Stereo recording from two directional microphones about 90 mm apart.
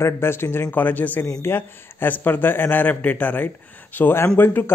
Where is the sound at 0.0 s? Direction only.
25° left (ahead or behind).